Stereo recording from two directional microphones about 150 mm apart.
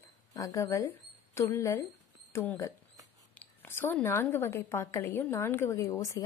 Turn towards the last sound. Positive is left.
turn(degrees=20)  # may be behind; listen again after turning